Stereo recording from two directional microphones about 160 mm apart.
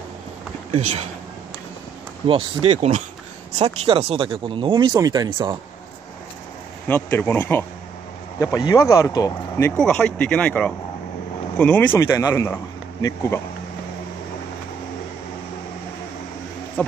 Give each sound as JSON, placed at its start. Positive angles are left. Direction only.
{"t": 0.7, "sound": "speech", "side_deg": -45}
{"t": 2.2, "sound": "speech", "side_deg": -35}
{"t": 6.9, "sound": "speech", "side_deg": 15}
{"t": 9.8, "sound": "speech", "side_deg": 5}
{"t": 16.8, "sound": "speech", "side_deg": 5}